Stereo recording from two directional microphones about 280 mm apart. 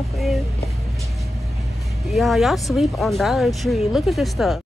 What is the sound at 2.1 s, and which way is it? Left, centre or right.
Speech, centre.